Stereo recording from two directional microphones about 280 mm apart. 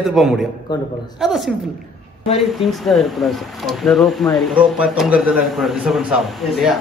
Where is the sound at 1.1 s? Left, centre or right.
Centre.